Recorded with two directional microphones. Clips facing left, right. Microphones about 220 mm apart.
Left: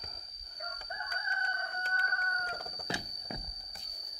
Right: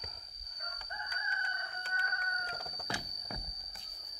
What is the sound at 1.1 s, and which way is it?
Chicken, 50° left (ahead or behind).